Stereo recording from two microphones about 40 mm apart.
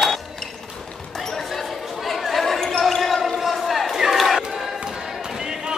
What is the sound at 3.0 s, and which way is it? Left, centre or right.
Basketball bounce, centre.